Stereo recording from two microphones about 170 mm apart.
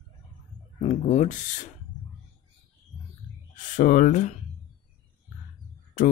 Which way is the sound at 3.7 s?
50° left (ahead or behind).